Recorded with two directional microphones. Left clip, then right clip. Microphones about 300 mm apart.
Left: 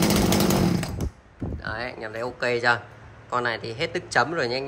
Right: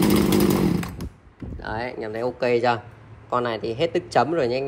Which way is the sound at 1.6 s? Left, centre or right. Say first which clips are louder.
Right 3 dB; centre.